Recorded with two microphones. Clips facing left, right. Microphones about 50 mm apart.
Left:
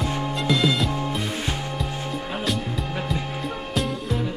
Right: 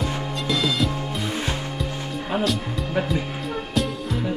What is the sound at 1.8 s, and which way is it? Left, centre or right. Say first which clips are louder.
Music: even; centre.